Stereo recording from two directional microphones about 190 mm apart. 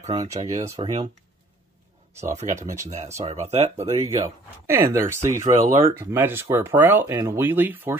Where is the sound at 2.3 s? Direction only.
40° right (ahead or behind).